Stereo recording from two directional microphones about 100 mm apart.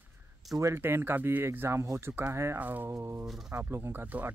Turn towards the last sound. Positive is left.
turn(degrees=-20)  # may be behind; listen again after turning